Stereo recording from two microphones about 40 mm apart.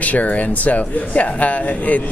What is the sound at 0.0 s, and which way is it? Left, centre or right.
Speech, left.